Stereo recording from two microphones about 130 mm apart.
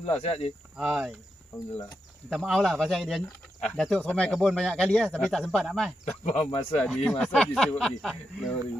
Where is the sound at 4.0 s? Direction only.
10° left (ahead or behind).